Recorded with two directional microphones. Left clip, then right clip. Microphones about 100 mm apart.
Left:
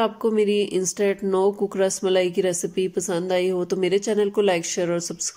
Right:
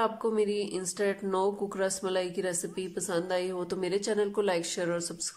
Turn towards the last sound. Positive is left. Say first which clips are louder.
# left 7 dB
turn(degrees=25)  # may be behind; listen again after turning